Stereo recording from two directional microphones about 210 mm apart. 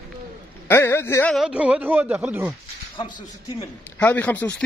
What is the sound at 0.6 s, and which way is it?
Speech, 10° left (ahead or behind).